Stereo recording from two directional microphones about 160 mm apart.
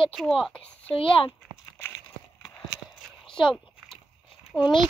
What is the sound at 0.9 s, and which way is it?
Speech, 35° left (ahead or behind).